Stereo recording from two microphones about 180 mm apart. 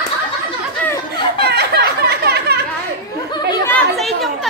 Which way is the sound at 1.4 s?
65° right (ahead or behind).